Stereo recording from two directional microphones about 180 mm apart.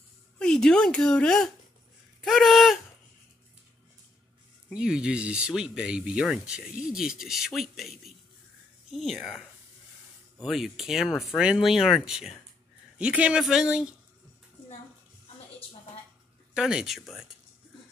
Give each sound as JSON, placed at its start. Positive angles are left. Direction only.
{"t": 0.4, "sound": "speech", "side_deg": 5}
{"t": 4.6, "sound": "speech", "side_deg": -5}
{"t": 10.4, "sound": "speech", "side_deg": 0}
{"t": 16.5, "sound": "speech", "side_deg": -5}